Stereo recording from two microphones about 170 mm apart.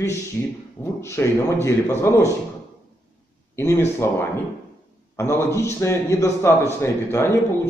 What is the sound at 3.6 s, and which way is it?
Speech, 15° left (ahead or behind).